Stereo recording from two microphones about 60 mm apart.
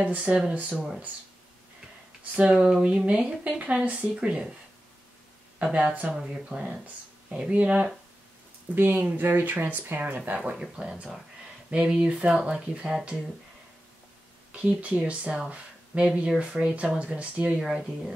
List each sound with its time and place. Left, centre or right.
0.0 s speech: centre
2.3 s speech: centre
5.6 s speech: centre
8.7 s speech: right
10.4 s speech: centre
14.5 s speech: right
17.6 s speech: centre